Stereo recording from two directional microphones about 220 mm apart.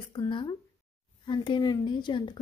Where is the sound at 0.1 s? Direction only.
20° left (ahead or behind).